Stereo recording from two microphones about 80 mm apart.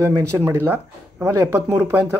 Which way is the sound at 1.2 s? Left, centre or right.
Right.